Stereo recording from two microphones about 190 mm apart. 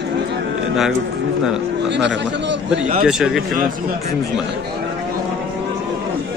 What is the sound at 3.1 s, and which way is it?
Speech, centre (ahead or behind).